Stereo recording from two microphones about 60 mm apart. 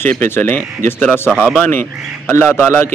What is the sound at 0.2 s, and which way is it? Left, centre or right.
A man's voice, left.